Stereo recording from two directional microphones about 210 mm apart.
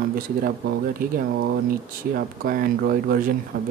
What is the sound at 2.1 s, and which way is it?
Speech, 40° right (ahead or behind).